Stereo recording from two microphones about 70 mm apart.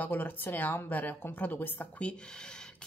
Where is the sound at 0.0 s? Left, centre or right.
Left.